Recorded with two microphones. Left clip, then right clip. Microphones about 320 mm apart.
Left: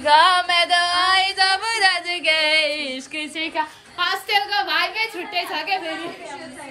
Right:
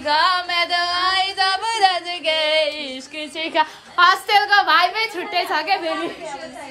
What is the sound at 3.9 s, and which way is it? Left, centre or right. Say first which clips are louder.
A woman's voice: right 7 dB; centre.